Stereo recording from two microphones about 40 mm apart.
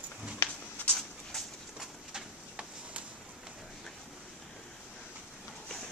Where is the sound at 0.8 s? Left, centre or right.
Left.